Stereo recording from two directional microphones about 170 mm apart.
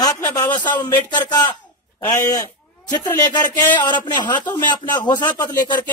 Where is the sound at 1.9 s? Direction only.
20° left (ahead or behind).